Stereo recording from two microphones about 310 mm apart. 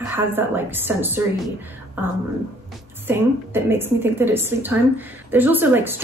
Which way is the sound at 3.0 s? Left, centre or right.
Centre.